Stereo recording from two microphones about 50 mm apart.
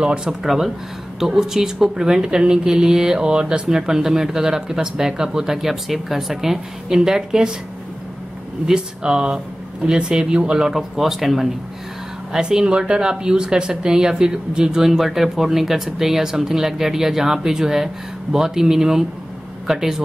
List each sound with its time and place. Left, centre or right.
0.0 s a woman's voice: centre
8.6 s a woman's voice: centre
10.7 s speech: centre
12.3 s a woman's voice: centre